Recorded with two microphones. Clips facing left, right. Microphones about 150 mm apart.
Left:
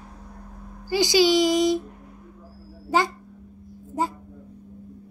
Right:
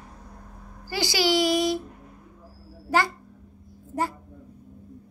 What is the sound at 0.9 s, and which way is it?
Speech, 15° left (ahead or behind).